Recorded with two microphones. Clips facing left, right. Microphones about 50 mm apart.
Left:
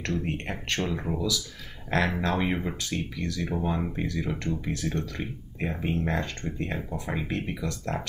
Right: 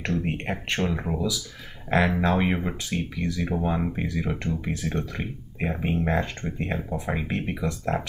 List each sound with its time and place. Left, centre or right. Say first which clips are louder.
0.0 s speech: right 3 dB; centre